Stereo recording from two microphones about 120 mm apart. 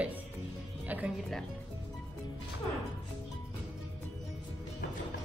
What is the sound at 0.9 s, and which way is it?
Music, 15° right (ahead or behind).